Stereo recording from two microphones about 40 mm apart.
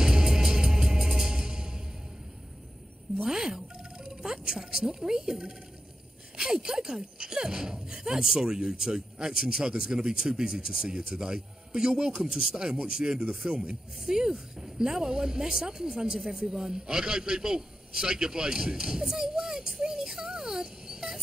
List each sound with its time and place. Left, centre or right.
0.0 s music: centre
3.3 s music: centre
6.3 s speech: centre
19.8 s a sound: centre